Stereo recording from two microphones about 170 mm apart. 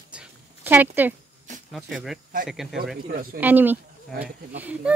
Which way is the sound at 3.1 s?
55° right (ahead or behind).